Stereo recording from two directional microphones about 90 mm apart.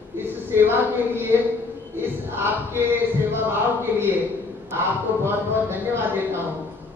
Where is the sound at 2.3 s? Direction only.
25° right (ahead or behind).